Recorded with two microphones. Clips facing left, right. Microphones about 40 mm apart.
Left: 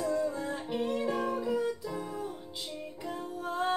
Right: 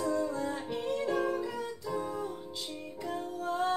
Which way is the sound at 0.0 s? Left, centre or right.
Centre.